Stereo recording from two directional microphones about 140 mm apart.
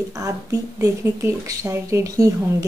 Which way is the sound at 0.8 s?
20° right (ahead or behind).